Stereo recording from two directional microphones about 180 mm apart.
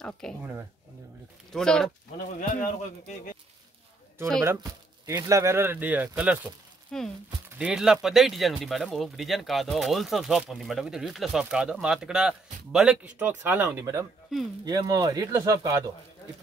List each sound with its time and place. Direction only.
0.0 s speech: 5° left (ahead or behind)
1.5 s speech: 5° left (ahead or behind)
2.5 s a man's voice: 45° left (ahead or behind)
4.4 s speech: 20° right (ahead or behind)
6.9 s speech: centre (ahead or behind); by 15.8 s 20° right (ahead or behind)